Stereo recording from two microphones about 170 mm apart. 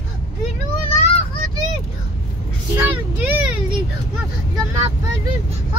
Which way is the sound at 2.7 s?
15° right (ahead or behind).